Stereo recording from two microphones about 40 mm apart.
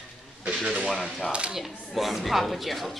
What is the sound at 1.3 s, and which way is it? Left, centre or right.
Speech, right.